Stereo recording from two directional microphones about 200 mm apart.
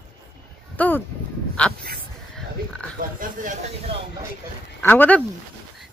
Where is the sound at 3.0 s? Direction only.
45° right (ahead or behind).